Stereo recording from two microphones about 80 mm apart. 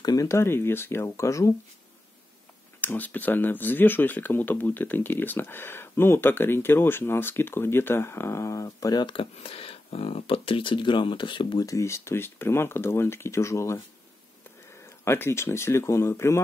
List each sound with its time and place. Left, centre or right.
0.0 s speech: left
0.3 s speech: left
2.8 s speech: left
8.9 s speech: left
10.5 s speech: left
11.6 s speech: left
15.0 s speech: left